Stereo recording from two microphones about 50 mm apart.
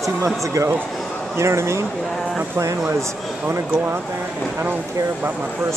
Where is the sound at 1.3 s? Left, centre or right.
Right.